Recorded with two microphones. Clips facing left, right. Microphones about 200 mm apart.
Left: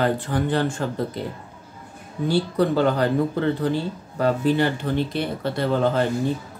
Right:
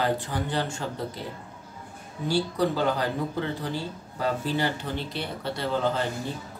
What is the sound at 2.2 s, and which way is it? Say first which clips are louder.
Speech: left 4 dB; 60° left (ahead or behind).